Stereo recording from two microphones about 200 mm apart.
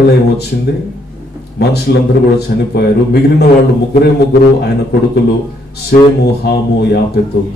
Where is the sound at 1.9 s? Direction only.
50° left (ahead or behind).